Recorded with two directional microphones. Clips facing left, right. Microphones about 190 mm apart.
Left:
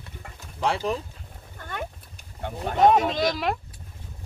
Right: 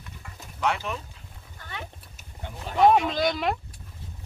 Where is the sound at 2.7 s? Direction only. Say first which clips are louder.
Left 1 dB; 55° left (ahead or behind).